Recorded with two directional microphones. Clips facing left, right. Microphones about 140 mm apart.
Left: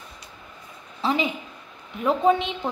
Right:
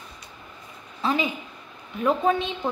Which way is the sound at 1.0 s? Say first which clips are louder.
Left 1 dB; 20° left (ahead or behind).